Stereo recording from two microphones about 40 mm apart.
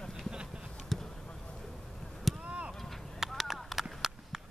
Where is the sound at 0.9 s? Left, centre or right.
Centre.